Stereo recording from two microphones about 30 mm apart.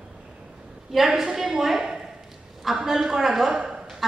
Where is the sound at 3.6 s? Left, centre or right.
Centre.